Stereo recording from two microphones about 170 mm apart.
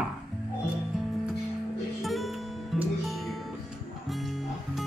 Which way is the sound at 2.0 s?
Centre (ahead or behind).